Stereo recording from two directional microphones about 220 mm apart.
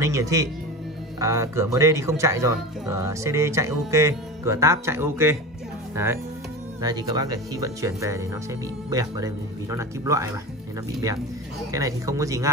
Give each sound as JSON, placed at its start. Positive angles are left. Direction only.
{"t": 0.0, "sound": "speech", "side_deg": -15}
{"t": 6.8, "sound": "speech", "side_deg": -20}
{"t": 11.7, "sound": "speech", "side_deg": -15}